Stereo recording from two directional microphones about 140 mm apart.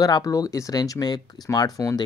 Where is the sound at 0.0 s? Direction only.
25° left (ahead or behind).